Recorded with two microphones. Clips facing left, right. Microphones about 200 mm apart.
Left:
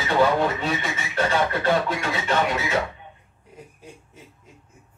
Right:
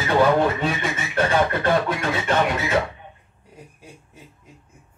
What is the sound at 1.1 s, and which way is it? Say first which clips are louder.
Speech: right 2 dB; 50° right (ahead or behind).